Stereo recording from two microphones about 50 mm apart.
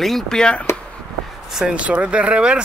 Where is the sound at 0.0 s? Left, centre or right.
Centre.